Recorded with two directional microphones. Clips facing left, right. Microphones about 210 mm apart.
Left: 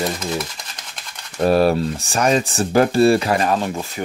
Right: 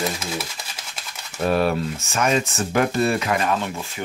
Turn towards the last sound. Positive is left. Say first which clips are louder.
# left 4 dB
turn(degrees=40)  # may be behind; listen again after turning